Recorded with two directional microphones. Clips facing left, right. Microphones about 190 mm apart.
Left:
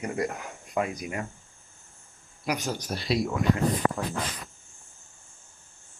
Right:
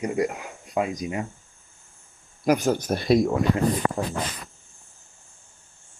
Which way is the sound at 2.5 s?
45° right (ahead or behind).